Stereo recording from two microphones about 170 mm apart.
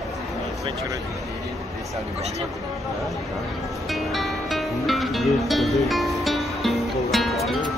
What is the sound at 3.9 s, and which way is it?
Music, centre (ahead or behind).